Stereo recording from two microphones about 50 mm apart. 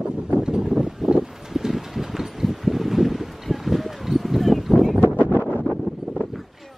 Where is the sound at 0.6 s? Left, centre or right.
Centre.